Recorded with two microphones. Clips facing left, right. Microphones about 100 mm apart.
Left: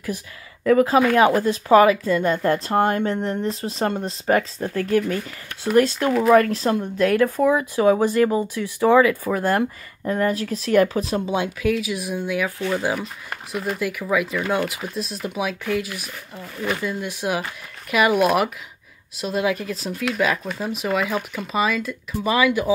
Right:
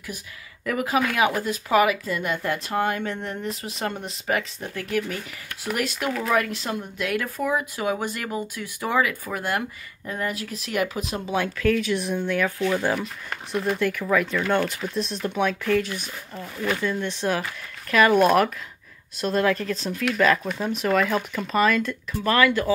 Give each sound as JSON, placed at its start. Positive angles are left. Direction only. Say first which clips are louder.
{"t": 0.7, "sound": "speech", "louder": "left 8 dB", "side_deg": 30}
{"t": 11.2, "sound": "speech", "louder": "left 1 dB", "side_deg": 20}
{"t": 22.3, "sound": "speech", "louder": "left 1 dB", "side_deg": 15}